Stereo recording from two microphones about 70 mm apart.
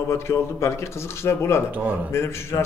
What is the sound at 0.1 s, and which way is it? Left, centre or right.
A man's voice, left.